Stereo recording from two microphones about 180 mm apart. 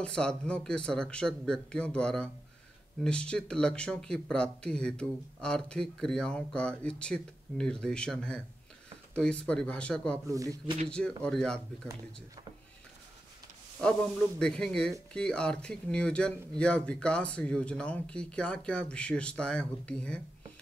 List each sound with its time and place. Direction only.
0.0 s speech: 5° left (ahead or behind)
10.2 s speech: 20° right (ahead or behind)
10.9 s speech: 5° left (ahead or behind)
14.4 s speech: 5° left (ahead or behind)